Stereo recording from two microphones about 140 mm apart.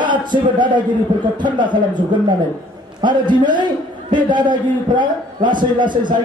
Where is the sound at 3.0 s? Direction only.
35° right (ahead or behind).